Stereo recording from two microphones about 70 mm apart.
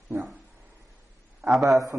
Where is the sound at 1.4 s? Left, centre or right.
Centre.